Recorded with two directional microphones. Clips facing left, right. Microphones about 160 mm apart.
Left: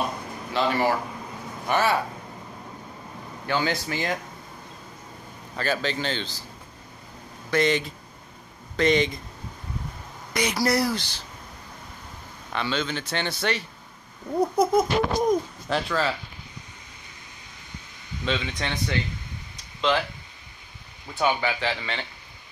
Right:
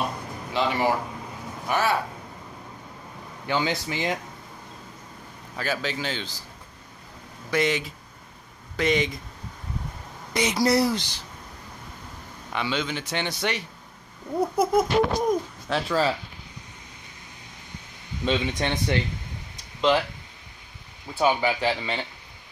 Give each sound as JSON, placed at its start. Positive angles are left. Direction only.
{"t": 0.5, "sound": "speech", "side_deg": -15}
{"t": 1.7, "sound": "a child's voice", "side_deg": 0}
{"t": 3.4, "sound": "speech", "side_deg": -20}
{"t": 5.6, "sound": "speech", "side_deg": -5}
{"t": 7.5, "sound": "a child's voice", "side_deg": -10}
{"t": 10.3, "sound": "speech", "side_deg": -20}
{"t": 12.5, "sound": "speech", "side_deg": -15}
{"t": 14.6, "sound": "a child's voice", "side_deg": -5}
{"t": 18.2, "sound": "speech", "side_deg": -10}
{"t": 21.1, "sound": "speech", "side_deg": -10}